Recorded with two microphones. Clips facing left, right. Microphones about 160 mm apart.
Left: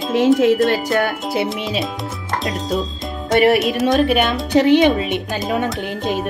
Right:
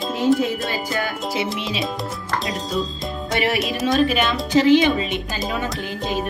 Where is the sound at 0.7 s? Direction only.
65° left (ahead or behind).